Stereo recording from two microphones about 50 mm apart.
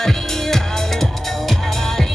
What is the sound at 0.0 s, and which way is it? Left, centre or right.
Music, centre.